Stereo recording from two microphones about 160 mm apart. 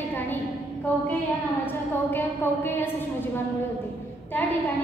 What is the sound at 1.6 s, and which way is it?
A woman's voice, 15° left (ahead or behind).